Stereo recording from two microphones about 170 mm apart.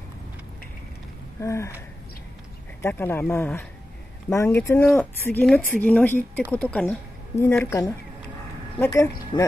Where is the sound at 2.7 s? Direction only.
15° left (ahead or behind).